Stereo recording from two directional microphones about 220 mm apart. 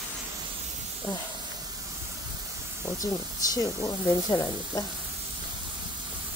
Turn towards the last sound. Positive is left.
turn(degrees=15)  # may be behind; listen again after turning